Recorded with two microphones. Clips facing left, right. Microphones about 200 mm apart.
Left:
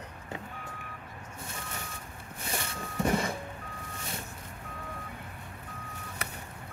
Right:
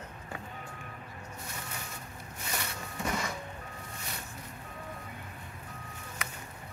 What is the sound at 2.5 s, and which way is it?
Printer, 30° left (ahead or behind).